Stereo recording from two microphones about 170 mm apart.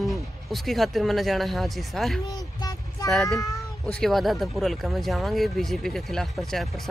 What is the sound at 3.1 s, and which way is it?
Speech, centre (ahead or behind).